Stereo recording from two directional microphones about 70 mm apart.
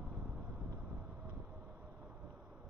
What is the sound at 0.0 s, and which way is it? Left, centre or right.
Vehicle, right.